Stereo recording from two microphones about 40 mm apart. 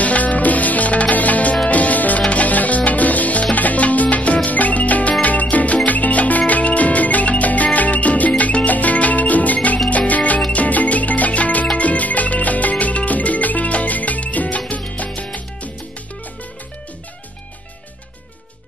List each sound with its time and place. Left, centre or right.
0.0 s music: left